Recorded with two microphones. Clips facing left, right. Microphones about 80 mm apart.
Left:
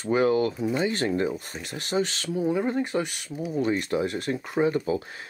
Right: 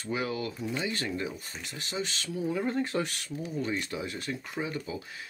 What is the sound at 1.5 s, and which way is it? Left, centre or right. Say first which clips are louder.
Speech: left 7 dB; left.